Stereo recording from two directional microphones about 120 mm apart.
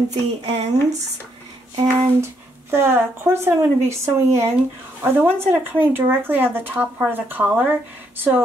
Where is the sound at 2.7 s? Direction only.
20° right (ahead or behind).